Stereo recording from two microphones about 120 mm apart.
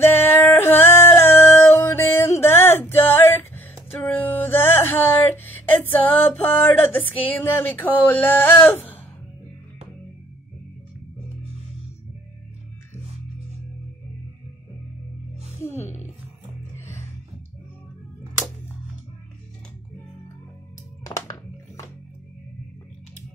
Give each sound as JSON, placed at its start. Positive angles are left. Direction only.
{"t": 0.0, "sound": "music", "side_deg": 20}
{"t": 8.6, "sound": "sigh", "side_deg": 15}
{"t": 15.6, "sound": "music", "side_deg": 20}
{"t": 21.0, "sound": "music", "side_deg": 30}